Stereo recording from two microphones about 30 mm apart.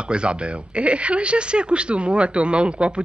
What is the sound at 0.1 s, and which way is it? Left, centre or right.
Speech, right.